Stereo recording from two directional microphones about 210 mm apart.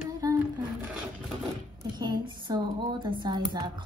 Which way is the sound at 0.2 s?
15° right (ahead or behind).